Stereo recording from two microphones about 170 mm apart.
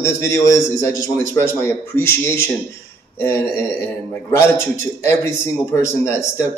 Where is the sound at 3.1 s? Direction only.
15° left (ahead or behind).